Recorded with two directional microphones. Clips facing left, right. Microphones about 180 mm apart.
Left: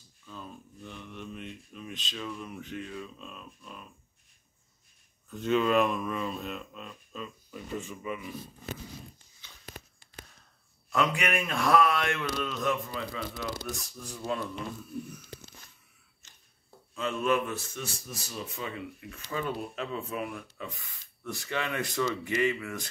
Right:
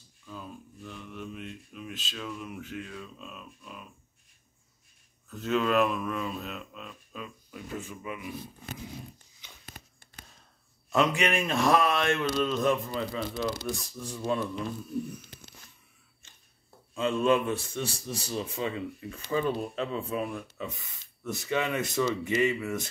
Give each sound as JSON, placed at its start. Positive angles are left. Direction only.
{"t": 0.3, "sound": "speech", "side_deg": -5}
{"t": 5.3, "sound": "speech", "side_deg": 0}
{"t": 10.9, "sound": "speech", "side_deg": -25}
{"t": 16.9, "sound": "speech", "side_deg": -25}